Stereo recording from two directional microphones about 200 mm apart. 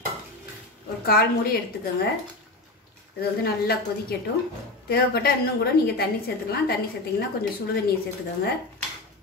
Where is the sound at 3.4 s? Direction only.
50° left (ahead or behind).